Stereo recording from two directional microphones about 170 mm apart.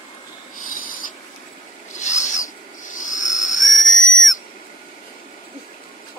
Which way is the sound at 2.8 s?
50° left (ahead or behind).